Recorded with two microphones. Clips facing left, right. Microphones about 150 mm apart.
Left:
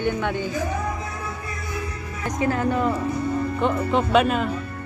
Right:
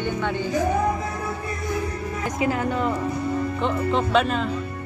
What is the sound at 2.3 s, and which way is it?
Speech, 10° right (ahead or behind).